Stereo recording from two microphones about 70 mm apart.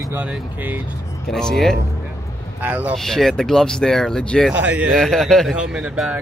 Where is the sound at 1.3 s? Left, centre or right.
Centre.